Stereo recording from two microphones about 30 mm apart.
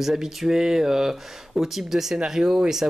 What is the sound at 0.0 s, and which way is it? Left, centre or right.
Speech, centre.